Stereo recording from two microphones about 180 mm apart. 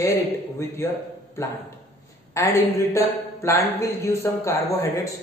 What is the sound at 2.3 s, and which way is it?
Speech, 15° left (ahead or behind).